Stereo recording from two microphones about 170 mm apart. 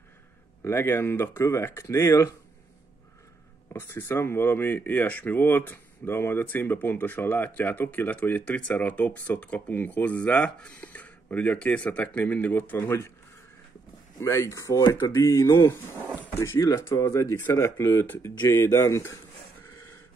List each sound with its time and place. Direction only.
0.7 s speech: 15° left (ahead or behind)
3.7 s speech: 15° left (ahead or behind)
14.2 s speech: 15° left (ahead or behind)